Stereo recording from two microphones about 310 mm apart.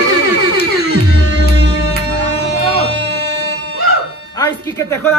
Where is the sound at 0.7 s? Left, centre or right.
Right.